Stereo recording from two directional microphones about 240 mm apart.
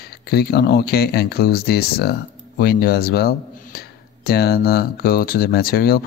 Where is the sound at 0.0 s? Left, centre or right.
Left.